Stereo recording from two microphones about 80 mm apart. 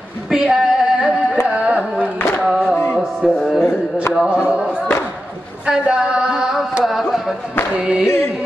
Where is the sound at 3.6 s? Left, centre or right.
Left.